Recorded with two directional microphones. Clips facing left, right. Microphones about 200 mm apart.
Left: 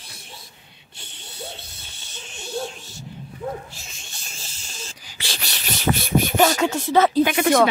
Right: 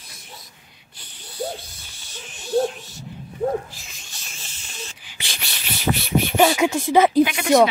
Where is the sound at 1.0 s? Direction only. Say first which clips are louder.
Right 8 dB; 25° left (ahead or behind).